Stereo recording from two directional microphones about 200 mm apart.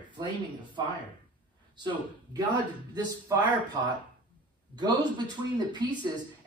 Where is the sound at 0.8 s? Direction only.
20° right (ahead or behind).